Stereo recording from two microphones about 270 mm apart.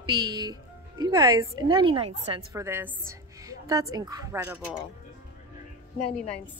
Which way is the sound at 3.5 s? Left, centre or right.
Centre.